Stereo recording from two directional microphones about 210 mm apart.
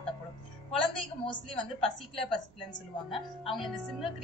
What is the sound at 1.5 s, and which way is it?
Speech, 5° left (ahead or behind).